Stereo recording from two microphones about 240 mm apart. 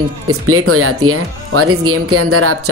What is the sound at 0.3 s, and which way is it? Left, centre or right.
Speech, right.